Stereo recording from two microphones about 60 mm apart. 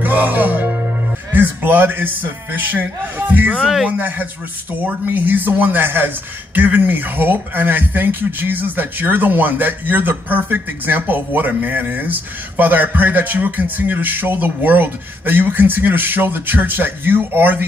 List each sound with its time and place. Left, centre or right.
0.0 s music: right
3.6 s speech: centre
3.9 s speech: right